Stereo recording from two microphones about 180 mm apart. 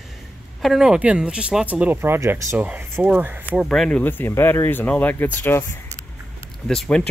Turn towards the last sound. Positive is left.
turn(degrees=5)  # may be behind; listen again after turning